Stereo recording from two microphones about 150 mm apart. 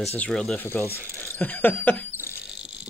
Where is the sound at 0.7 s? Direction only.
15° left (ahead or behind).